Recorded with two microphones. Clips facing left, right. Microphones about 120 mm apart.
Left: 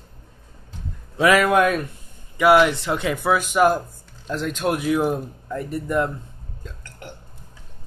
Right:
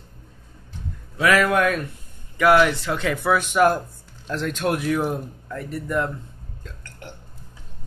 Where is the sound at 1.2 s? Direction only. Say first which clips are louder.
Left 2 dB; 20° left (ahead or behind).